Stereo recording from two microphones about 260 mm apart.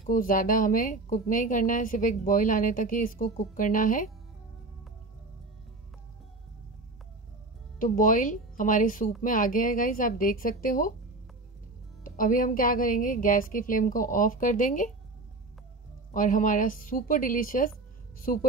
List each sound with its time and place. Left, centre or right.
0.0 s a woman's voice: left
7.8 s a woman's voice: left
12.0 s a woman's voice: left
16.1 s a woman's voice: left